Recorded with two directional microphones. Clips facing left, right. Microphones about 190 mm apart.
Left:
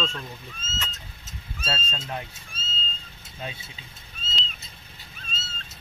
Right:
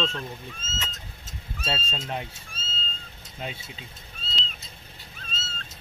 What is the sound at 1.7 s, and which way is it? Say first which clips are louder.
Speech: right 1 dB; 15° right (ahead or behind).